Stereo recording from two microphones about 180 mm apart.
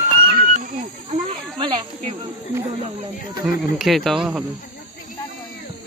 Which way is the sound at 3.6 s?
Centre (ahead or behind).